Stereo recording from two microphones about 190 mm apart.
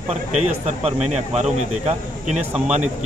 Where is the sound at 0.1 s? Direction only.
35° right (ahead or behind).